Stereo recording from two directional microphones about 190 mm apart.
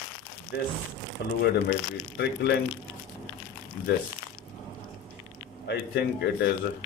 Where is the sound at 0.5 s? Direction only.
60° left (ahead or behind).